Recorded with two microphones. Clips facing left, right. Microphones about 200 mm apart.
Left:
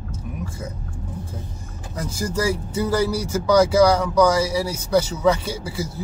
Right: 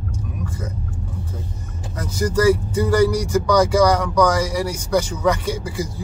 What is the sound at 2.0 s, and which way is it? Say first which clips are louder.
Speech: right 5 dB; 10° left (ahead or behind).